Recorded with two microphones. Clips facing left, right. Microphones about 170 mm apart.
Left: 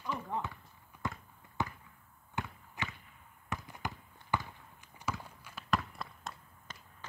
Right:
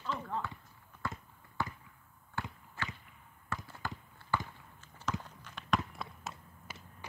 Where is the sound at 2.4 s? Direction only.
20° left (ahead or behind).